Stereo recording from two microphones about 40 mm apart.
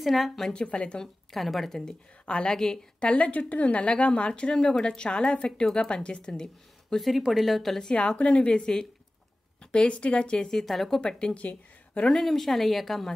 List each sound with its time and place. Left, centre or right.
0.0 s a woman's voice: centre
0.7 s a woman's voice: left
1.3 s a woman's voice: centre
2.2 s a woman's voice: left
4.3 s a woman's voice: left
7.0 s a woman's voice: centre
8.2 s a woman's voice: left
9.7 s a woman's voice: left
10.6 s a woman's voice: centre
11.0 s a woman's voice: left
11.3 s speech: left
12.2 s a woman's voice: centre